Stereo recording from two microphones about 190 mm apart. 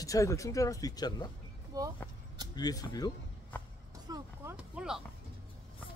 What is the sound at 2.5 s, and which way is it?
Speech, 20° left (ahead or behind).